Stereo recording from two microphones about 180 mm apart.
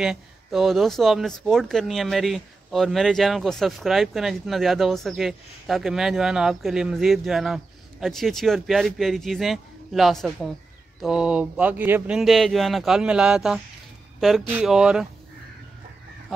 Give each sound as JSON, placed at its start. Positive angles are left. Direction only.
{"t": 0.0, "sound": "speech", "side_deg": 0}